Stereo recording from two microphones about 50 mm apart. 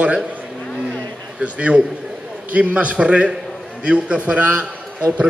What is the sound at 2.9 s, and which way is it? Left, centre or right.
A man's voice, right.